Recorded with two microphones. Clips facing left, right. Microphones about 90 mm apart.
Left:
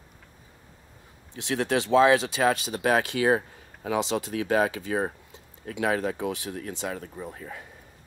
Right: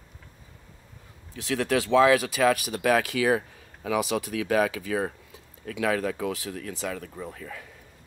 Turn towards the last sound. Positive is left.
turn(degrees=30)  # may be behind; listen again after turning